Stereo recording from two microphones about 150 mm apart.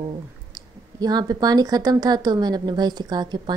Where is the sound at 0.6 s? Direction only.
25° right (ahead or behind).